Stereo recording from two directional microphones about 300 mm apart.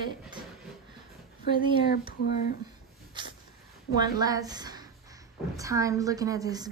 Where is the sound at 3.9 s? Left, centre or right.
Centre.